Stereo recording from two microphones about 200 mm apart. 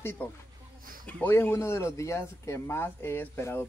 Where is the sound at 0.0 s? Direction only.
10° left (ahead or behind).